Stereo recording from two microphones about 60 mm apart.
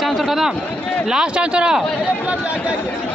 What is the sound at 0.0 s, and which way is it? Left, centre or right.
A man's voice, centre.